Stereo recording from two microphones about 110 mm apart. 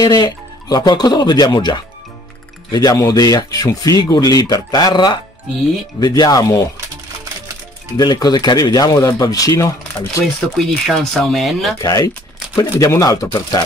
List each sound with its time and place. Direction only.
0.0 s speech: 40° left (ahead or behind)
8.0 s speech: 40° left (ahead or behind)
10.2 s speech: centre (ahead or behind)
11.8 s speech: 35° left (ahead or behind)